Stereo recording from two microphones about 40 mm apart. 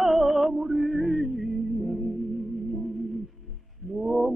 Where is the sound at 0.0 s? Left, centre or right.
Centre.